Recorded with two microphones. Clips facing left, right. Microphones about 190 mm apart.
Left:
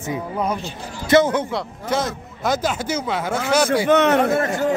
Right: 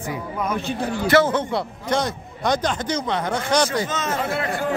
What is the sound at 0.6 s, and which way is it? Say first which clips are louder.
Speech: right 7 dB; 60° right (ahead or behind).